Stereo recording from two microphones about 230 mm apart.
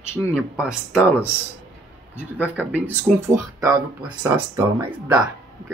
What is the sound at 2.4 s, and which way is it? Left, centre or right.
Speech, centre.